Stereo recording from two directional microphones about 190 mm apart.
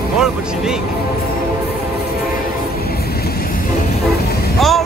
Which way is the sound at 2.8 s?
55° left (ahead or behind).